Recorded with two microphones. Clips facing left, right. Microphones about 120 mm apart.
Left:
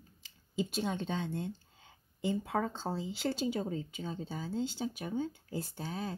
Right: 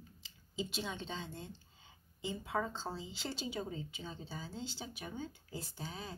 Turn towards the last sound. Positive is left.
turn(degrees=50)  # may be behind; listen again after turning